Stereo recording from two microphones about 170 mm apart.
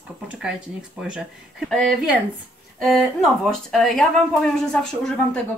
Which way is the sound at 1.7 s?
Centre (ahead or behind).